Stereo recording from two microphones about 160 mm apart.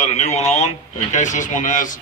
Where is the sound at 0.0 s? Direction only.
45° left (ahead or behind).